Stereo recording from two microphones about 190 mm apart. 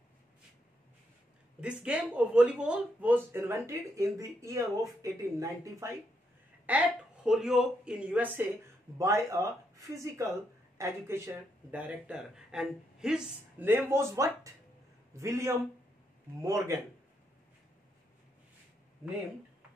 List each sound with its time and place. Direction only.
1.6 s speech: 5° right (ahead or behind)